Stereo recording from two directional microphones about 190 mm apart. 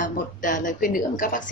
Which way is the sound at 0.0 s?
45° left (ahead or behind).